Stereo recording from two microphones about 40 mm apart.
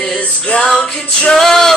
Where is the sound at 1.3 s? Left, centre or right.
Centre.